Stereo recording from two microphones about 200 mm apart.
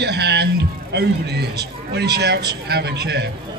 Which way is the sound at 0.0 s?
55° right (ahead or behind).